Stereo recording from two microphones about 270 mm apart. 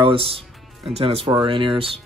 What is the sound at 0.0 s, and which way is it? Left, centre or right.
Speech, centre.